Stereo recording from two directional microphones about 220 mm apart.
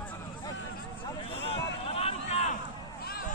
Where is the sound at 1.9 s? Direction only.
25° left (ahead or behind).